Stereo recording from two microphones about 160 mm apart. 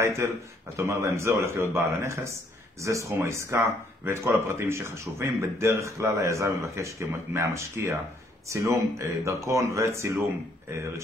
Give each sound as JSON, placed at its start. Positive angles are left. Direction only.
{"t": 0.0, "sound": "speech", "side_deg": -15}